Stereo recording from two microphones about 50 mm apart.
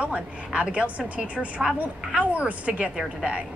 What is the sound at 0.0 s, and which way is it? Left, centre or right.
A woman's voice, right.